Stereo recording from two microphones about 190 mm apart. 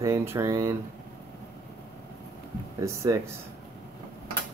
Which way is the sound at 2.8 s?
15° right (ahead or behind).